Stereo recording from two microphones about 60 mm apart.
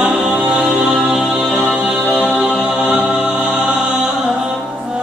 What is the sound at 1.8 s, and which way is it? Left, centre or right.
Music, right.